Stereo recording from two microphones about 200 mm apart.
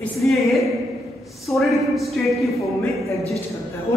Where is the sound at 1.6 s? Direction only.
Centre (ahead or behind).